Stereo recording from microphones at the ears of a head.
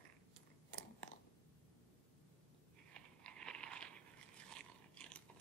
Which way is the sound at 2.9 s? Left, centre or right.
Right.